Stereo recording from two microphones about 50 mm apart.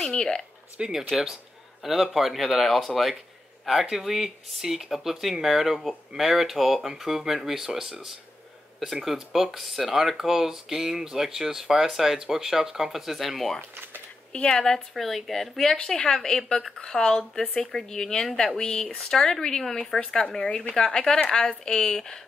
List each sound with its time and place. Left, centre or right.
0.1 s speech: centre
0.7 s speech: centre
1.8 s speech: centre
14.3 s speech: centre